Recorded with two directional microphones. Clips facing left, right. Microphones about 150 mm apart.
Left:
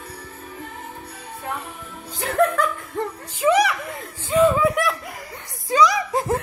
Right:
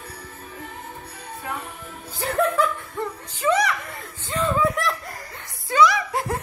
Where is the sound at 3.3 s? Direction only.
10° left (ahead or behind).